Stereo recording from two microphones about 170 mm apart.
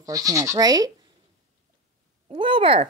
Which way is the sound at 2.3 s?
30° right (ahead or behind).